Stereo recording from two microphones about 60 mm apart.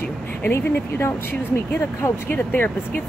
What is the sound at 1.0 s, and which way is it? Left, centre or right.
Speech, left.